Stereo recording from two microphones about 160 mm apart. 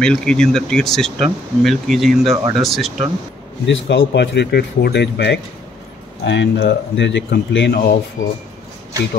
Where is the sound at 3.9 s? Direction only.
90° left.